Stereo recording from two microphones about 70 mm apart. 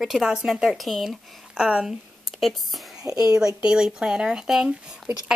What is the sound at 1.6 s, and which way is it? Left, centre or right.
Speech, centre.